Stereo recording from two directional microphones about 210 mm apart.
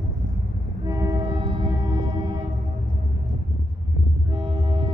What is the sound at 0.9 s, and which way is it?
Train, 20° right (ahead or behind).